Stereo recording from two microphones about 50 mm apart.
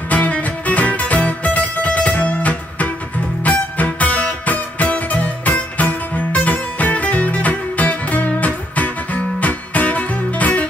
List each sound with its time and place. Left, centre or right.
0.1 s music: left